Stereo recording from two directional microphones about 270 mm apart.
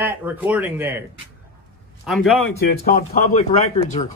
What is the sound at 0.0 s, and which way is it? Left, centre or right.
Speech, centre.